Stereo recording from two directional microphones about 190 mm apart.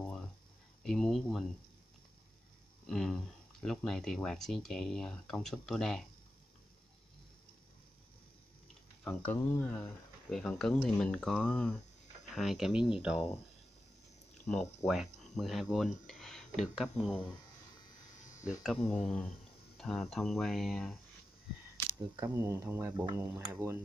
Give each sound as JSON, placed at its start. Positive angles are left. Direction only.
{"t": 0.0, "sound": "a sound", "side_deg": 5}
{"t": 0.8, "sound": "speech", "side_deg": 0}
{"t": 2.9, "sound": "speech", "side_deg": 0}
{"t": 9.0, "sound": "speech", "side_deg": 10}
{"t": 14.4, "sound": "speech", "side_deg": 5}
{"t": 18.4, "sound": "speech", "side_deg": 0}
{"t": 22.1, "sound": "speech", "side_deg": -15}